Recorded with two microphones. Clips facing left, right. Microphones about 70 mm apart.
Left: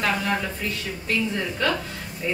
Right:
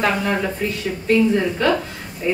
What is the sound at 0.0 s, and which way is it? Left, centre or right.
A woman's voice, centre.